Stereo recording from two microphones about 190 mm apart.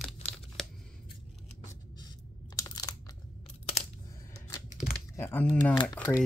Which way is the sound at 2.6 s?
20° left (ahead or behind).